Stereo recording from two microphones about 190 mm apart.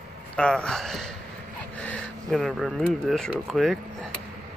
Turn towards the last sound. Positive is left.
turn(degrees=0)  # may be behind; listen again after turning